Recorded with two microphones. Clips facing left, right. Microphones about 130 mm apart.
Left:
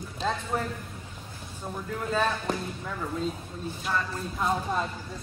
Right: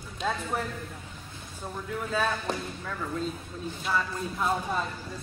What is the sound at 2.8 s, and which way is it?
Speech, 10° left (ahead or behind).